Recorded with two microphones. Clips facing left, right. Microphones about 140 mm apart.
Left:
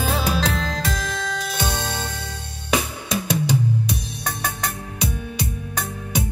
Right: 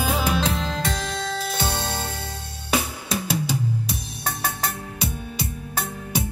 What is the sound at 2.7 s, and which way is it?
Music, 20° left (ahead or behind).